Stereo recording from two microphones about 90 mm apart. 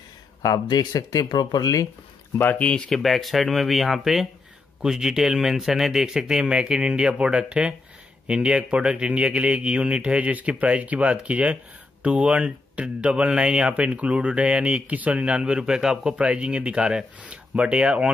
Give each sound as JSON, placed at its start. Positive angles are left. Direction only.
{"t": 0.4, "sound": "speech", "side_deg": 45}
{"t": 2.3, "sound": "speech", "side_deg": 20}
{"t": 2.9, "sound": "speech", "side_deg": 0}